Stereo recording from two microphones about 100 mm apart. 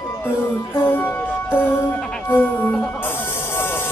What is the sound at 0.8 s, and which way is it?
Music, 20° left (ahead or behind).